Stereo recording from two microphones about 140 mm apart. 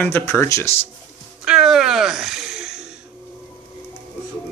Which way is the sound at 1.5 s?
5° right (ahead or behind).